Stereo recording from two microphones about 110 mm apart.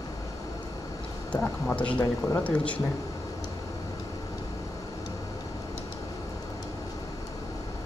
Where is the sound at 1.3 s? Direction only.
10° left (ahead or behind).